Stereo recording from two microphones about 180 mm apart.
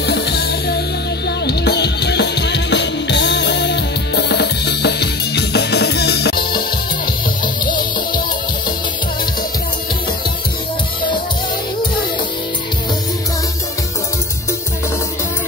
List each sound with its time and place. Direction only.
0.0 s music: 65° left (ahead or behind)
7.4 s music: 25° left (ahead or behind)